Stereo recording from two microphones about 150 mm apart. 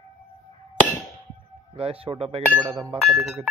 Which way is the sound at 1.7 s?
40° right (ahead or behind).